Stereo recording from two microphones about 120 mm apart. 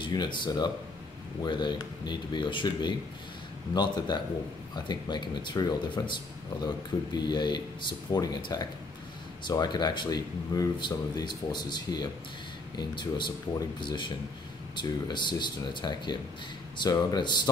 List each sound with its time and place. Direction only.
0.0 s speech: 40° left (ahead or behind)